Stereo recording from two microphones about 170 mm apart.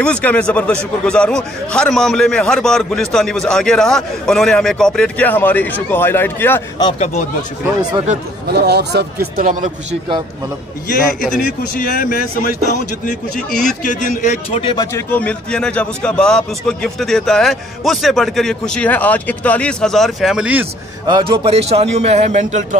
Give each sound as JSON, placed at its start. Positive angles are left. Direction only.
{"t": 0.0, "sound": "a man's voice", "side_deg": 10}
{"t": 8.5, "sound": "speech", "side_deg": -75}
{"t": 11.3, "sound": "speech", "side_deg": 55}
{"t": 14.6, "sound": "speech", "side_deg": 30}
{"t": 15.0, "sound": "a man's voice", "side_deg": 10}
{"t": 21.1, "sound": "a man's voice", "side_deg": -30}